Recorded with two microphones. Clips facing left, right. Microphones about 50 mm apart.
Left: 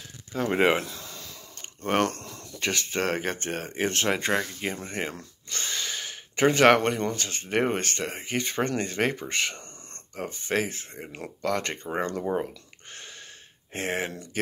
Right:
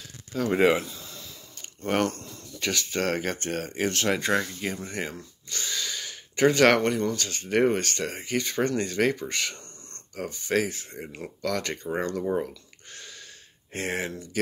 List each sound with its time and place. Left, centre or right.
0.3 s speech: left
1.0 s a sound: left
1.9 s speech: left
2.6 s speech: left
5.1 s a sound: left
6.9 s speech: left
13.7 s speech: left